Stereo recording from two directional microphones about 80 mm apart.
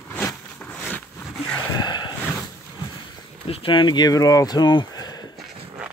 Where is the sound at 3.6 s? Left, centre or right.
Left.